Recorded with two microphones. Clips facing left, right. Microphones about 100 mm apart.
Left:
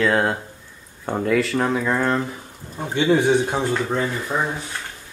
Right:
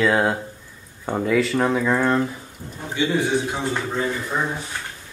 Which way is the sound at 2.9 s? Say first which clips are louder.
Left 4 dB; 50° left (ahead or behind).